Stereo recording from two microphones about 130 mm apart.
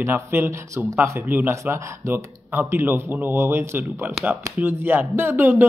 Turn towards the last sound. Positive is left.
turn(degrees=-15)  # may be behind; listen again after turning